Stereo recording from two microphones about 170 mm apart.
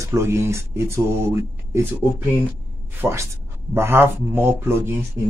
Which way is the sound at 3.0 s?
15° right (ahead or behind).